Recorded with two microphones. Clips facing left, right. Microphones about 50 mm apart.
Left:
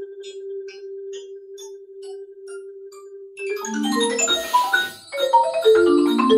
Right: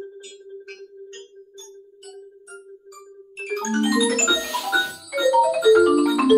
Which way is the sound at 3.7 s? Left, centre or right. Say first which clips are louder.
Right 3 dB; right.